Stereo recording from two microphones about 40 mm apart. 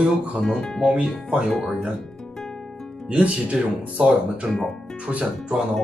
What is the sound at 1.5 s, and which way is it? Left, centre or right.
Speech, centre.